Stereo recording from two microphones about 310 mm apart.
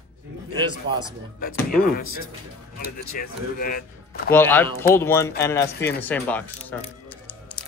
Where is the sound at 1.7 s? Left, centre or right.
Left.